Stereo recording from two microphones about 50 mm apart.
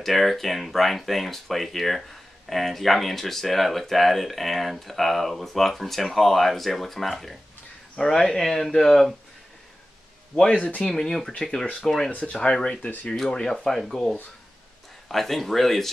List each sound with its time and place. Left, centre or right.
0.0 s speech: centre
10.5 s speech: left
10.9 s speech: centre
12.1 s speech: left
13.1 s speech: centre